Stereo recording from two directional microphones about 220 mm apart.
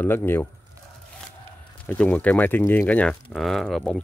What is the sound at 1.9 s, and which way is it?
Speech, 5° left (ahead or behind).